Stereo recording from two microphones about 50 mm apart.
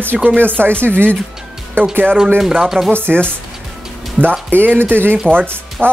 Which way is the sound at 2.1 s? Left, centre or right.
Right.